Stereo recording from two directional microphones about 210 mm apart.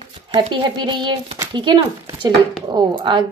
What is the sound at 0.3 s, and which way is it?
A woman's voice, 20° right (ahead or behind).